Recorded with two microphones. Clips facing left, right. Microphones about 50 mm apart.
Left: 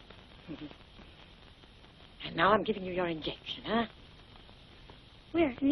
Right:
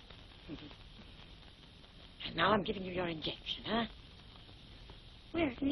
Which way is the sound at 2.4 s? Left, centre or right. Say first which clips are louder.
Left 5 dB; centre.